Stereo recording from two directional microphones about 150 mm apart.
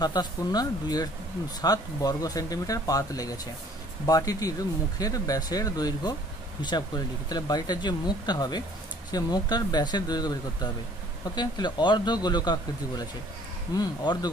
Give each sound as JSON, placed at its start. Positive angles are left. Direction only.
{"t": 0.0, "sound": "speech", "side_deg": 25}
{"t": 7.2, "sound": "speech", "side_deg": 25}